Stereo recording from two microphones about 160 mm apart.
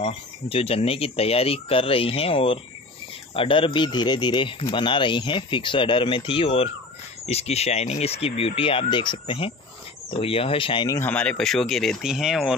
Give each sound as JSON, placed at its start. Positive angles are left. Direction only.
{"t": 0.0, "sound": "speech", "side_deg": 35}
{"t": 11.0, "sound": "speech", "side_deg": 10}